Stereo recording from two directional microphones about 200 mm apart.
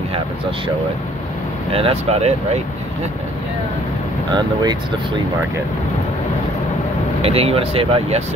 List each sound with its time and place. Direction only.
1.7 s speech: 30° right (ahead or behind)
7.2 s speech: 30° right (ahead or behind)